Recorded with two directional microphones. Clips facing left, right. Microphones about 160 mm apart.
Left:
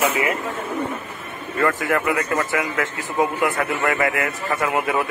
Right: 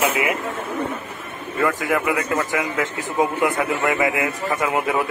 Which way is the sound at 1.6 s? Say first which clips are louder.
Even; 10° right (ahead or behind).